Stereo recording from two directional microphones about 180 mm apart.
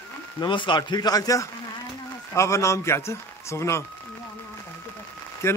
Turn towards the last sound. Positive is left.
turn(degrees=15)  # may be behind; listen again after turning